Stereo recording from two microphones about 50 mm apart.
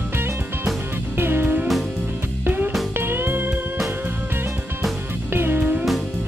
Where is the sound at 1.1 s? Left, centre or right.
Right.